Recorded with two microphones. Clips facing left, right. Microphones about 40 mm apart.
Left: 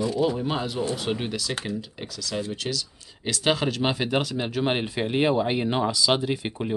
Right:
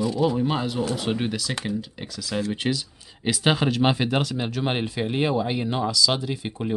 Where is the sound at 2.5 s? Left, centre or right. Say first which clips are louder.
Right 4 dB; right.